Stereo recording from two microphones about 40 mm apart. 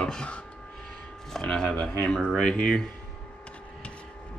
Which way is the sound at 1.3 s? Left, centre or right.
Centre.